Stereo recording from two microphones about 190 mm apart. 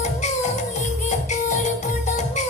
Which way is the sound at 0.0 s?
40° left (ahead or behind).